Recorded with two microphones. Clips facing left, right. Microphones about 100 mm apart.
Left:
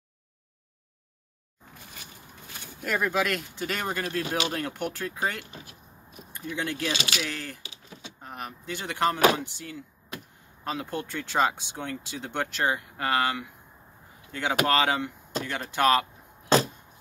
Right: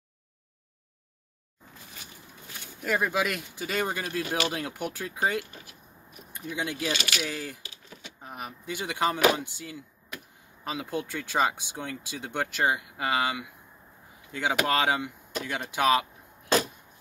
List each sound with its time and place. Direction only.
2.8 s speech: 10° right (ahead or behind)
6.9 s speech: 25° left (ahead or behind)
7.2 s speech: 10° right (ahead or behind)